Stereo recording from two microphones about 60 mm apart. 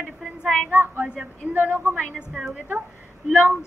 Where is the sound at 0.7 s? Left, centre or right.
Right.